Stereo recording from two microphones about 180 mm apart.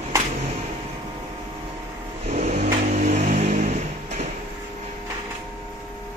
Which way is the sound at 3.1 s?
35° right (ahead or behind).